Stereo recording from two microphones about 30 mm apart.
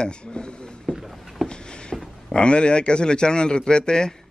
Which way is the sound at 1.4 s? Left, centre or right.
Left.